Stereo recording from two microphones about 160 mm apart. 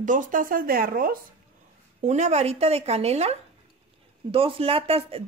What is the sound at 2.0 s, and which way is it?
Speech, 45° right (ahead or behind).